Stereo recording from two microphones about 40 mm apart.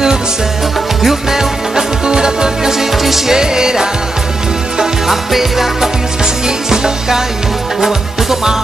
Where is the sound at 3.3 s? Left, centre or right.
Centre.